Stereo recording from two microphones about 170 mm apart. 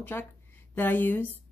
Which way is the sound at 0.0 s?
10° left (ahead or behind).